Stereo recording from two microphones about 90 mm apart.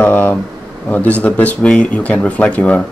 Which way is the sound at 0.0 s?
20° left (ahead or behind).